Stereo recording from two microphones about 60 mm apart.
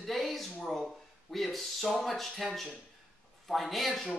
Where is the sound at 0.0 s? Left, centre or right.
Centre.